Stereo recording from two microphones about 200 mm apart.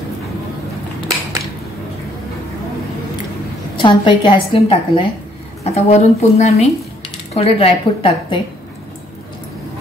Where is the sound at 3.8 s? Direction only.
25° left (ahead or behind).